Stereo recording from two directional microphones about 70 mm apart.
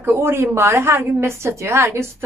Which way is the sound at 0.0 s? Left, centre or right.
Right.